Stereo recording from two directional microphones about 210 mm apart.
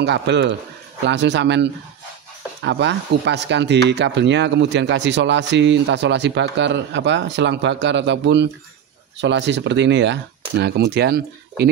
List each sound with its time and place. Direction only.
0.0 s speech: 55° right (ahead or behind)